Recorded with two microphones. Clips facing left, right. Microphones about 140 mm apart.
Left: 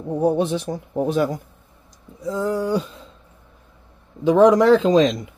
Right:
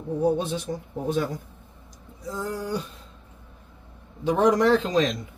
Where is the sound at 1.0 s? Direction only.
90° left.